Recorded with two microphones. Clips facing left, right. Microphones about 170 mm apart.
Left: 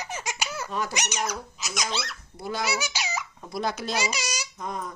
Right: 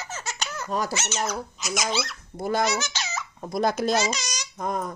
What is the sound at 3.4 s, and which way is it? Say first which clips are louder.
Speech: right 7 dB; 45° right (ahead or behind).